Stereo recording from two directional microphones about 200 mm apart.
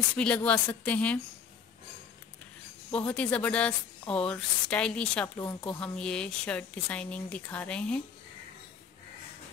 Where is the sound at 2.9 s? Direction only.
5° left (ahead or behind).